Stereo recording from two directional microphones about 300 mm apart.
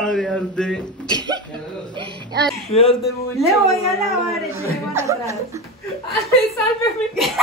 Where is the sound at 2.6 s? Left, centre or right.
Centre.